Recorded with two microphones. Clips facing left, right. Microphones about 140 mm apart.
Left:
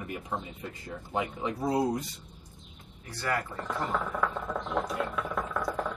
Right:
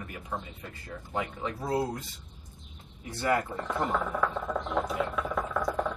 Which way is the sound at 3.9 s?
Centre (ahead or behind).